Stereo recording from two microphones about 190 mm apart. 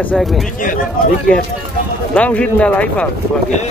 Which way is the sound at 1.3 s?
5° left (ahead or behind).